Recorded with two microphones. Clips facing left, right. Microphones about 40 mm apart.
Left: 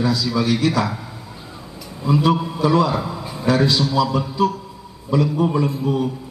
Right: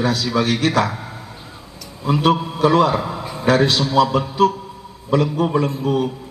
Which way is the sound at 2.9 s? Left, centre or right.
Right.